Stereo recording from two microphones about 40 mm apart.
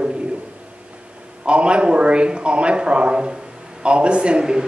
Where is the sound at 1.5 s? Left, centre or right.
Right.